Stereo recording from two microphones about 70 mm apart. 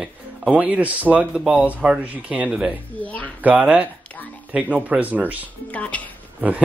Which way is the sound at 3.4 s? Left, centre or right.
Right.